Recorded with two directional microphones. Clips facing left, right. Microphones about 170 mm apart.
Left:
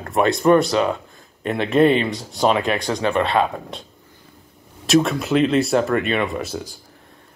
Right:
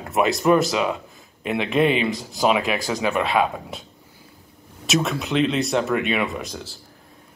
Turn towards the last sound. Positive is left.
turn(degrees=5)  # may be behind; listen again after turning